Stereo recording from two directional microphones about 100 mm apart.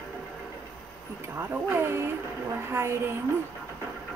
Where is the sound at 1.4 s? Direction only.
25° right (ahead or behind).